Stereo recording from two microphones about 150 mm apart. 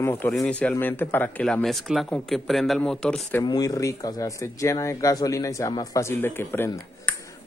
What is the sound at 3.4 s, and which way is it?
Speech, 25° left (ahead or behind).